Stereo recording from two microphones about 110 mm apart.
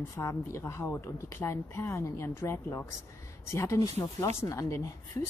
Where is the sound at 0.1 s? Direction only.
25° left (ahead or behind).